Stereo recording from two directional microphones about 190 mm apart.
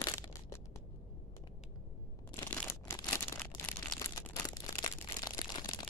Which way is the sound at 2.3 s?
15° left (ahead or behind).